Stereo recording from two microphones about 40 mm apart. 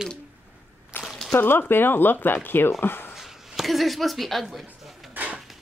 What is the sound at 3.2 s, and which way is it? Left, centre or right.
Speech, centre.